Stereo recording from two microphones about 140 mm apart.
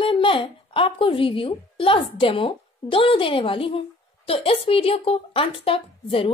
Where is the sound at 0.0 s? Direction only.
40° left (ahead or behind).